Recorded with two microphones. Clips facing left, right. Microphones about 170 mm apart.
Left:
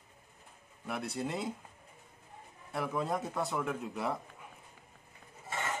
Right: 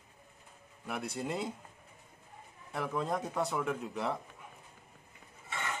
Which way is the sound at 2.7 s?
5° left (ahead or behind).